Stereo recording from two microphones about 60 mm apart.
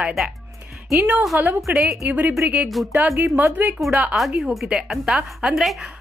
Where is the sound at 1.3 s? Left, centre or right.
Right.